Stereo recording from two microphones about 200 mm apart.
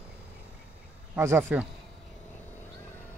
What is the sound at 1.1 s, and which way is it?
Speech, 10° right (ahead or behind).